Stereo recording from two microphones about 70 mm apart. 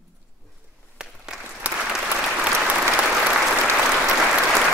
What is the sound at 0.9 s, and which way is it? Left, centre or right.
Applause, centre.